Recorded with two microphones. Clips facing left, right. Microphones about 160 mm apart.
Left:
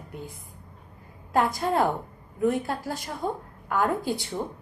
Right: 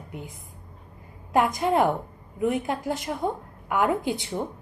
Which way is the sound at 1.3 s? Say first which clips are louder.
Right 2 dB; 15° right (ahead or behind).